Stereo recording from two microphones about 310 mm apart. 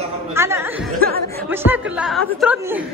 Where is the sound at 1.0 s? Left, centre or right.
Right.